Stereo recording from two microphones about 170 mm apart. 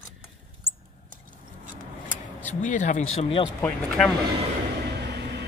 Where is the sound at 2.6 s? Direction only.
50° left (ahead or behind); by 3.5 s 35° left (ahead or behind).